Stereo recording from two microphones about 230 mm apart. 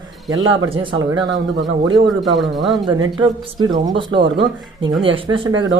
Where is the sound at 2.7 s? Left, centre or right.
Centre.